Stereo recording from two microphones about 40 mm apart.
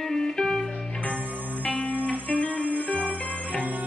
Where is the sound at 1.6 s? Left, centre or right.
Left.